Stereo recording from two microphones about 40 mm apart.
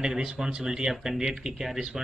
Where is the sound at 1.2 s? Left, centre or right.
Centre.